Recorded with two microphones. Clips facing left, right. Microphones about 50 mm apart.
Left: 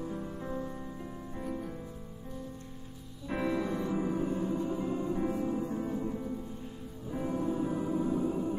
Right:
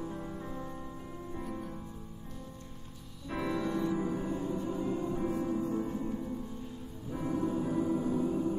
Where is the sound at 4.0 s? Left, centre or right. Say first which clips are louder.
Left 2 dB; centre.